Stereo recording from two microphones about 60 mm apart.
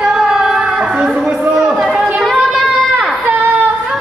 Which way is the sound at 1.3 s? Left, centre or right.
Centre.